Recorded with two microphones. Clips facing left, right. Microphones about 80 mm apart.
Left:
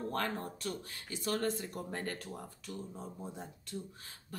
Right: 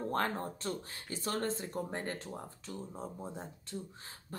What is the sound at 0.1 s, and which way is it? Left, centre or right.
Speech, right.